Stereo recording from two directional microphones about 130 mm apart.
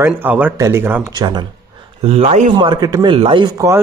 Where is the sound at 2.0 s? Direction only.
55° right (ahead or behind).